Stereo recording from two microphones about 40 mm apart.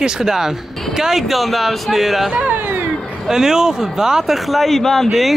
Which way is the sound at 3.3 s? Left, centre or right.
Centre.